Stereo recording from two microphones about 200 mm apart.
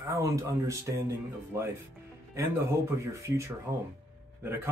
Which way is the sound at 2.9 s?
15° right (ahead or behind).